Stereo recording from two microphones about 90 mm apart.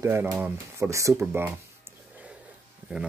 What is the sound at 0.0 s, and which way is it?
Speech, 30° right (ahead or behind).